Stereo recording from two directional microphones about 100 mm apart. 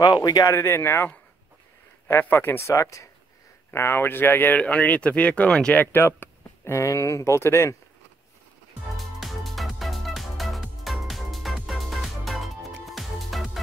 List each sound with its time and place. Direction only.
0.0 s speech: 45° left (ahead or behind)
0.5 s speech: 25° left (ahead or behind)
8.9 s music: centre (ahead or behind)